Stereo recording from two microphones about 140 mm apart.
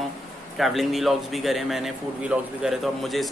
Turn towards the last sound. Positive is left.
turn(degrees=0)  # may be behind; listen again after turning